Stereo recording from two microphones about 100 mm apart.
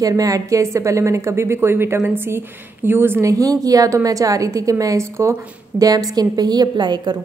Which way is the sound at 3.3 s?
35° right (ahead or behind).